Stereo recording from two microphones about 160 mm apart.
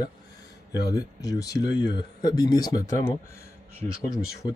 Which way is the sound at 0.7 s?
25° left (ahead or behind).